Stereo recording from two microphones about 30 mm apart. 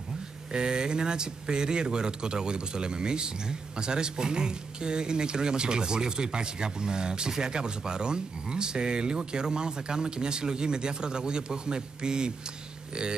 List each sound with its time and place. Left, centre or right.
0.5 s speech: right